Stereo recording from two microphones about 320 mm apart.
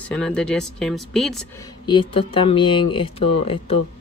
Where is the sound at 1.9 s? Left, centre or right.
Centre.